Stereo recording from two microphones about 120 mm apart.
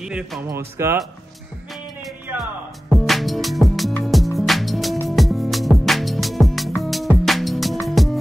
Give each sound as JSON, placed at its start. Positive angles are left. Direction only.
{"t": 0.0, "sound": "speech", "side_deg": -5}
{"t": 0.4, "sound": "speech", "side_deg": -20}
{"t": 2.9, "sound": "music", "side_deg": 0}